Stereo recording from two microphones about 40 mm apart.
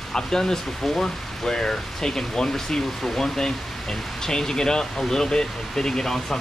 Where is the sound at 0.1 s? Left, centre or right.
Centre.